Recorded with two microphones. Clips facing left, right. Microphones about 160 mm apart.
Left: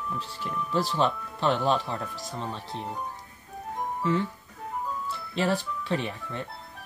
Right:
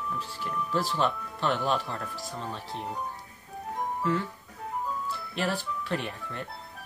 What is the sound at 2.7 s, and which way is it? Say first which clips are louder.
Speech: even; centre (ahead or behind).